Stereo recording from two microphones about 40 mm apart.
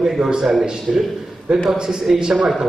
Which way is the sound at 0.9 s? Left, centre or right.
Centre.